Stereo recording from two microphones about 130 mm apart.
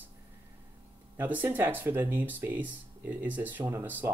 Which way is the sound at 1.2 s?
15° right (ahead or behind).